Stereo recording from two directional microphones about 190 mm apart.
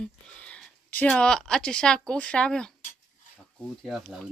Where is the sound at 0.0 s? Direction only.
5° left (ahead or behind).